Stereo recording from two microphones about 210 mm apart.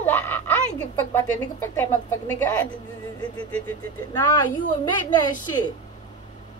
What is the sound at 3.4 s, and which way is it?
Speech, 5° left (ahead or behind).